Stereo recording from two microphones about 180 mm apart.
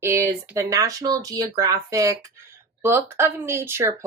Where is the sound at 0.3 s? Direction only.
20° right (ahead or behind).